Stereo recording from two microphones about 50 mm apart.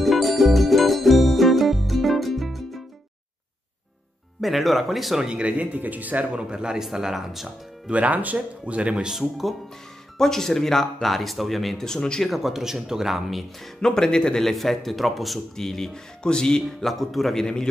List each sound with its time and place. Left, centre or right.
0.0 s music: centre
4.4 s speech: centre
5.2 s speech: right
6.5 s speech: centre
7.9 s speech: right
10.1 s speech: centre
12.3 s speech: centre
13.7 s speech: centre
14.5 s speech: centre
16.8 s speech: centre